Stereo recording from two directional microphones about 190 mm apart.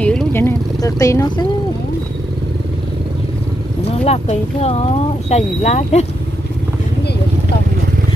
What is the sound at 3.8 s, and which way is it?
Speech, 35° left (ahead or behind).